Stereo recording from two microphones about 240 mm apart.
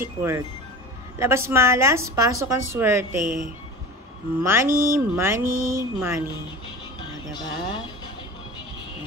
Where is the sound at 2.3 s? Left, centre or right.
Right.